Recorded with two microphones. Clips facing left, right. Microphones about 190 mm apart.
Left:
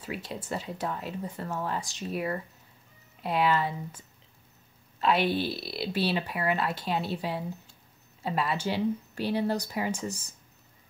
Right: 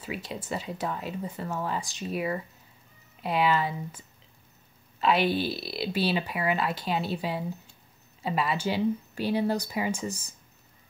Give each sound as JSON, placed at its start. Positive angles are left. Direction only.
{"t": 0.0, "sound": "speech", "side_deg": -5}
{"t": 5.0, "sound": "speech", "side_deg": 0}